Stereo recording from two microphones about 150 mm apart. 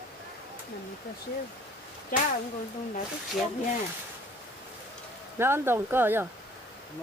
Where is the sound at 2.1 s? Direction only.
65° left (ahead or behind).